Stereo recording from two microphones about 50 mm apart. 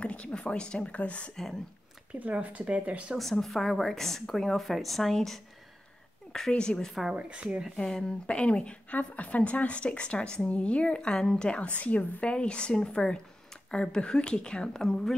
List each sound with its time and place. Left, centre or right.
0.0 s speech: left
1.3 s speech: centre
2.1 s speech: right
3.2 s a woman's voice: centre
6.5 s speech: centre
7.2 s speech: right
7.7 s speech: centre